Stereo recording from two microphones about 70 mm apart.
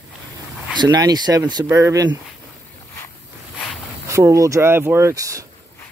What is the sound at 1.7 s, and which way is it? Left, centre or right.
Speech, right.